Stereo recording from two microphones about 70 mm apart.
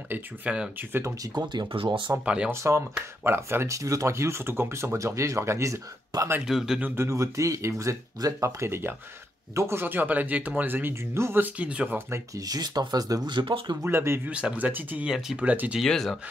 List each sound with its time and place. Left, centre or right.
0.1 s speech: centre
1.2 s speech: right
2.2 s speech: centre
2.5 s speech: right
3.3 s speech: right
6.4 s speech: centre
7.0 s speech: right
11.4 s speech: centre
12.4 s speech: right
13.8 s speech: right
14.2 s speech: centre
15.0 s speech: centre
15.3 s speech: right
15.8 s speech: centre